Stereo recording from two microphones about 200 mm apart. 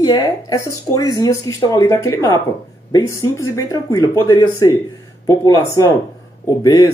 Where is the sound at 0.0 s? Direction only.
20° left (ahead or behind).